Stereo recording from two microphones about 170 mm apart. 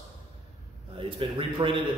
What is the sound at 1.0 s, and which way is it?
Speech, 30° right (ahead or behind).